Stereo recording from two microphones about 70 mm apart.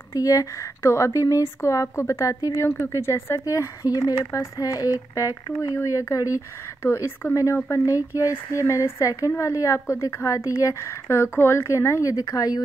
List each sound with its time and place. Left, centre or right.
0.1 s speech: left
2.7 s speech: left
3.3 s speech: left
6.8 s speech: left
11.1 s speech: left